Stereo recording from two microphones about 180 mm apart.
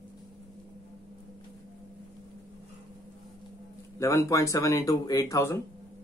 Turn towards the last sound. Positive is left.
turn(degrees=20)  # may be behind; listen again after turning